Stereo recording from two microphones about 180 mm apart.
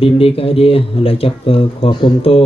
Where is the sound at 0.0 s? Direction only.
30° left (ahead or behind).